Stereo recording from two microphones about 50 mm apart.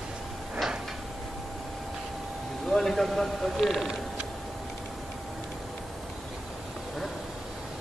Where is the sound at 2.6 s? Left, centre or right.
Centre.